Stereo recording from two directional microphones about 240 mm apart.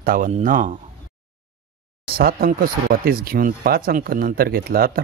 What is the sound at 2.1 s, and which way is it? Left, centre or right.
Speech, right.